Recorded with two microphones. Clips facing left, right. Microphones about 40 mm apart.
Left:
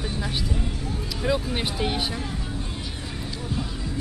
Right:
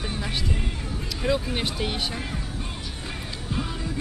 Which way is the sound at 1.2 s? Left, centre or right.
Centre.